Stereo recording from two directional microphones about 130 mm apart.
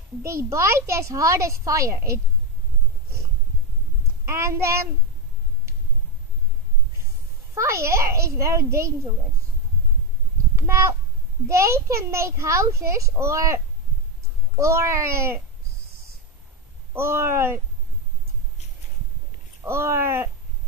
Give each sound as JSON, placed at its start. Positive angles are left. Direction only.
{"t": 0.2, "sound": "a child's voice", "side_deg": -20}
{"t": 4.3, "sound": "a child's voice", "side_deg": -20}
{"t": 7.5, "sound": "a child's voice", "side_deg": -20}
{"t": 10.5, "sound": "a sound", "side_deg": -20}
{"t": 11.4, "sound": "a child's voice", "side_deg": -20}
{"t": 14.6, "sound": "a child's voice", "side_deg": -20}
{"t": 16.9, "sound": "a child's voice", "side_deg": -20}
{"t": 19.6, "sound": "a child's voice", "side_deg": -20}